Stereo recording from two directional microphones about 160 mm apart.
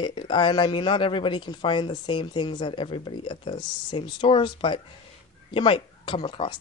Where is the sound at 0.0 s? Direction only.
30° left (ahead or behind).